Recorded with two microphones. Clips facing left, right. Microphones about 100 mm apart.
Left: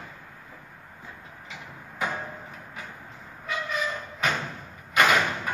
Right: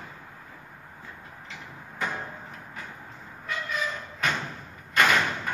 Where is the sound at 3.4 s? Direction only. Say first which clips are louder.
Left 2 dB; 5° left (ahead or behind).